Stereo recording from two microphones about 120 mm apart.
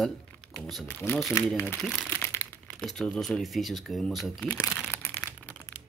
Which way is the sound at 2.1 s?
20° left (ahead or behind).